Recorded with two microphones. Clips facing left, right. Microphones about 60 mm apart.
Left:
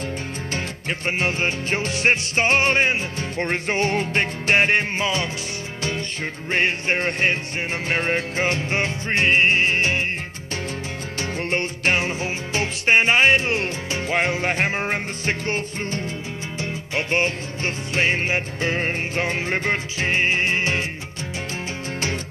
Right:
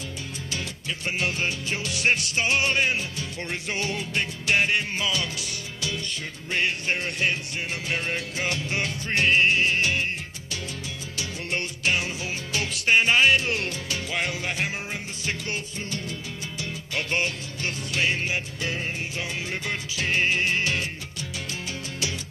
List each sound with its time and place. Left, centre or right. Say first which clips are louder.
0.5 s music: left 5 dB; left
11.1 s music: left 6 dB; left